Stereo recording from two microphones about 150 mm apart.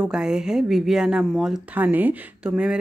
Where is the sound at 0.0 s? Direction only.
5° right (ahead or behind).